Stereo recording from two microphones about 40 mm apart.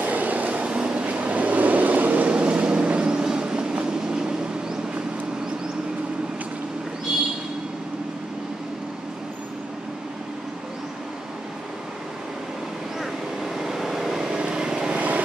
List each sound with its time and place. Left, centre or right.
0.0 s train: right
0.7 s vehicle: right
13.0 s vehicle: centre
15.0 s vehicle: right